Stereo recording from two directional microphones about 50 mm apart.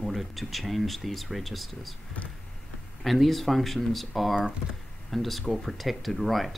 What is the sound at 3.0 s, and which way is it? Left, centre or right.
Speech, centre.